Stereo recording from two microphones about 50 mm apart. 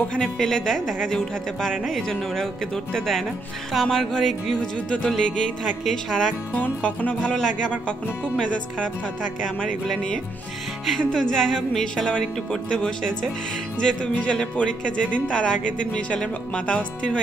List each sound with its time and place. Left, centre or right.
0.1 s speech: centre
3.7 s music: centre
4.6 s speech: centre
6.5 s music: left
7.3 s speech: centre
11.1 s speech: centre